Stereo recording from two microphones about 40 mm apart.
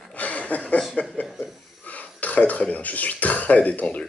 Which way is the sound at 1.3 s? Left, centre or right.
Centre.